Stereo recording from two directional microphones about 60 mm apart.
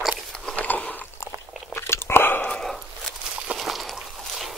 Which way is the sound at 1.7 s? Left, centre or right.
Left.